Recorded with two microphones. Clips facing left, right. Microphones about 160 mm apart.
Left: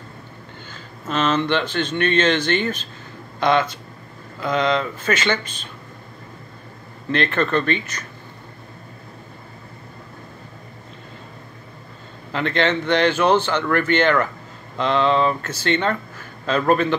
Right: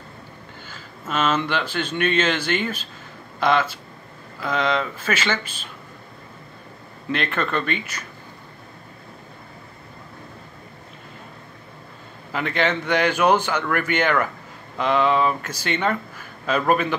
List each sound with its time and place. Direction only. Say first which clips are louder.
0.7 s speech: left 2 dB; 5° right (ahead or behind)
7.1 s speech: left 4 dB; 5° right (ahead or behind)
12.3 s speech: left 2 dB; 5° right (ahead or behind)